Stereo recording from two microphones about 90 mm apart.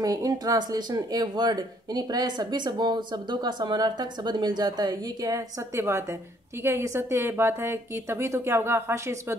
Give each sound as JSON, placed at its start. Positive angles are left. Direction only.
{"t": 0.0, "sound": "a woman's voice", "side_deg": -40}